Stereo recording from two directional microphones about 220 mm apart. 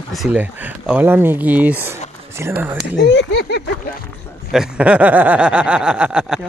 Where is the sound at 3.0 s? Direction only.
50° left (ahead or behind).